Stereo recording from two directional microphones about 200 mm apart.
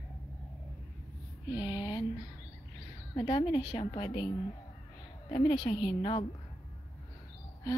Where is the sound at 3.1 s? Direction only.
25° left (ahead or behind).